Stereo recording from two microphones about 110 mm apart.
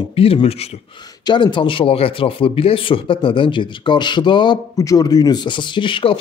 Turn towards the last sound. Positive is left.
turn(degrees=50)  # may be behind; listen again after turning